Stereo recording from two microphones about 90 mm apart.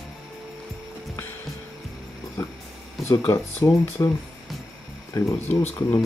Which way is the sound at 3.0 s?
30° left (ahead or behind).